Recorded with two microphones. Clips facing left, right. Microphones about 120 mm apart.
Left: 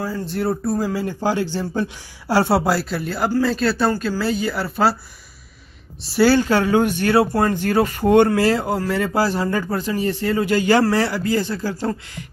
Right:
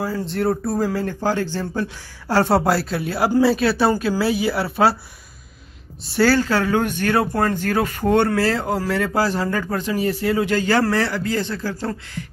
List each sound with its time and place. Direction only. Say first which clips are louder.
0.0 s speech: right 1 dB; centre (ahead or behind)
6.2 s a man's voice: left 2 dB; 20° left (ahead or behind); by 10.4 s 5° right (ahead or behind)
10.4 s a man's voice: left 4 dB; 10° left (ahead or behind)